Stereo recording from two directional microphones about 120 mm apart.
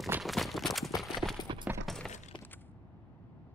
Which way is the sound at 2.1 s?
75° left (ahead or behind).